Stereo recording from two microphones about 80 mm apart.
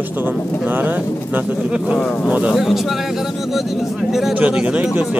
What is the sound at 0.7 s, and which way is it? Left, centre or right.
A man's voice, right.